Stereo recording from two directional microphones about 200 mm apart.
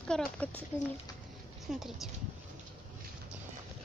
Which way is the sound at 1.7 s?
Centre (ahead or behind).